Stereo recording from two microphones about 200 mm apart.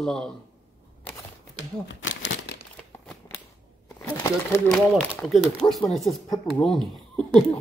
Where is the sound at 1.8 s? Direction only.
70° left (ahead or behind).